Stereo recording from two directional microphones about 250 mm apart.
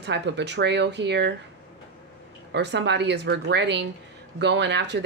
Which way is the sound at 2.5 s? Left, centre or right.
Right.